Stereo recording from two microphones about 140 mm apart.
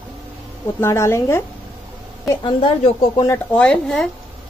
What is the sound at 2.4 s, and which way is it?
Speech, 40° left (ahead or behind).